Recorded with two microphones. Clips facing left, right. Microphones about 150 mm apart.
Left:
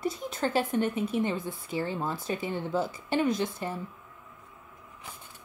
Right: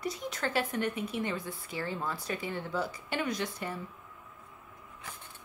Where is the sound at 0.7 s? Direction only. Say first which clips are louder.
Left 5 dB; 30° left (ahead or behind).